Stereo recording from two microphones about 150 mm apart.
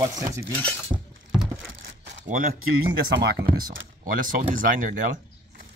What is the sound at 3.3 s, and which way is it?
Speech, 80° right.